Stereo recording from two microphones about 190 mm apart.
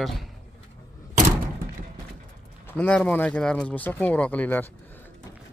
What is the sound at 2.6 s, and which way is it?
Speech, 5° left (ahead or behind).